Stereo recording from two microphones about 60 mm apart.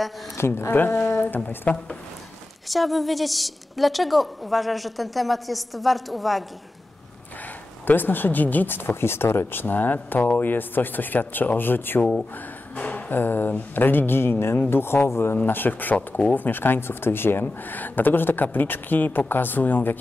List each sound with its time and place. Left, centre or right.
0.4 s speech: left
2.7 s a woman's voice: centre
7.8 s speech: left
12.7 s a sound: left
13.1 s speech: left
15.4 s speech: left